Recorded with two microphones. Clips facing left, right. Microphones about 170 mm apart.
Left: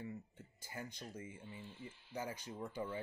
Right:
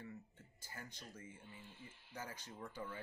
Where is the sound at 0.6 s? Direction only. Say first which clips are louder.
Left 6 dB; 15° left (ahead or behind).